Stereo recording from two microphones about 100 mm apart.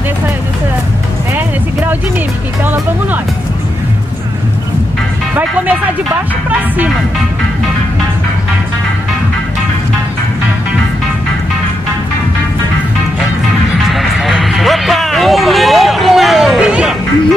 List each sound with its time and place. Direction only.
5.3 s speech: 15° right (ahead or behind)
13.8 s vehicle: centre (ahead or behind)